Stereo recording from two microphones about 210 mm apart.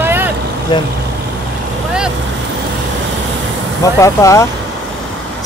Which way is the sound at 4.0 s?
15° left (ahead or behind).